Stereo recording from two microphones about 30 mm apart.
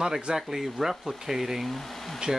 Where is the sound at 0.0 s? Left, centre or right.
Centre.